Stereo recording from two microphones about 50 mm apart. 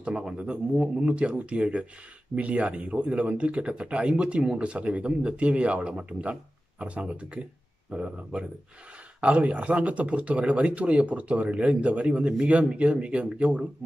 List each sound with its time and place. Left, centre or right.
0.0 s speech: centre